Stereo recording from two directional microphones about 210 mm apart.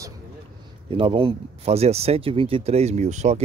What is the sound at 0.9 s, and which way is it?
Speech, 25° right (ahead or behind).